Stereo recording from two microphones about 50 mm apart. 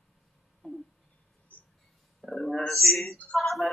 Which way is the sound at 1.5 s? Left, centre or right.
Left.